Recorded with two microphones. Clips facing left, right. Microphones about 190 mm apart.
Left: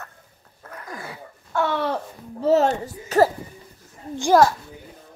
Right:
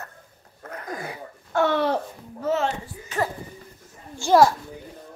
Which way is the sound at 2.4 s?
40° left (ahead or behind).